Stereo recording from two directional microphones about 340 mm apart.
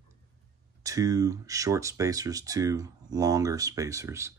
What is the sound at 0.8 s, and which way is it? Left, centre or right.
Speech, centre.